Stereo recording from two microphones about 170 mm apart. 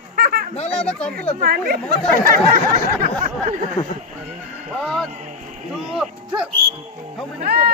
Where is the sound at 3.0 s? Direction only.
55° right (ahead or behind).